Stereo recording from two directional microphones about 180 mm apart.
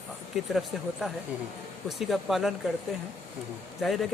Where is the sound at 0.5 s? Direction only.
Centre (ahead or behind).